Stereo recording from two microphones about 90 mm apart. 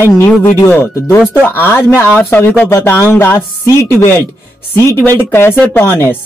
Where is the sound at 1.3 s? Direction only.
20° left (ahead or behind).